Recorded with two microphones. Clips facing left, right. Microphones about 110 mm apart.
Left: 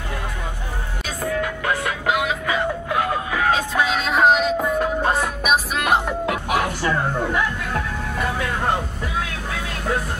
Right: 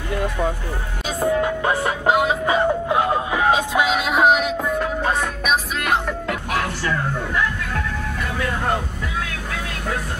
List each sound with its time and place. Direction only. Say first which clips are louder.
1.2 s music: right 4 dB; 25° right (ahead or behind); by 7.0 s 15° left (ahead or behind)